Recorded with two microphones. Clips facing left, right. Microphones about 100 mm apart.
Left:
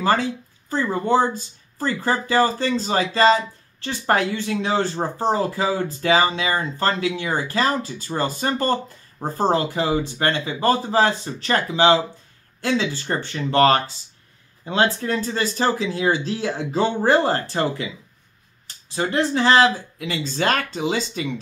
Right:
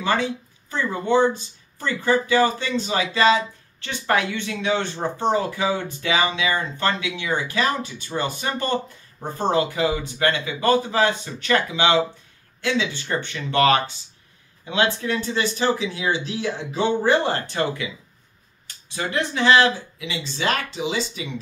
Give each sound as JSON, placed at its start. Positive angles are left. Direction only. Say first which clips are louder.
{"t": 0.0, "sound": "speech", "louder": "left 2 dB", "side_deg": 40}
{"t": 18.9, "sound": "speech", "louder": "left 4 dB", "side_deg": 35}